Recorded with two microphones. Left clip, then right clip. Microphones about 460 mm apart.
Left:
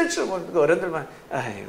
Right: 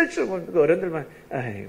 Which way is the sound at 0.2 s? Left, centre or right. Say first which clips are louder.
Even; left.